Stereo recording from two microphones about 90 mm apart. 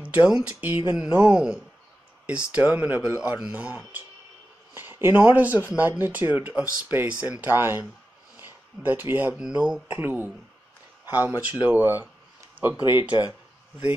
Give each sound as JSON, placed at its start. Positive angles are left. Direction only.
{"t": 0.3, "sound": "speech", "side_deg": -15}
{"t": 4.7, "sound": "a sound", "side_deg": -25}
{"t": 5.1, "sound": "speech", "side_deg": -20}
{"t": 9.4, "sound": "speech", "side_deg": -10}